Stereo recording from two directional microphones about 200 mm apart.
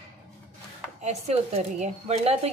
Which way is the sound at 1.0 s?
35° right (ahead or behind).